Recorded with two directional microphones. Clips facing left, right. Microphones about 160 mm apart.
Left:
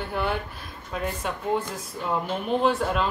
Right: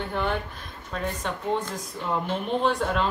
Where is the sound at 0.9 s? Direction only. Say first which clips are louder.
Left 1 dB; 10° left (ahead or behind).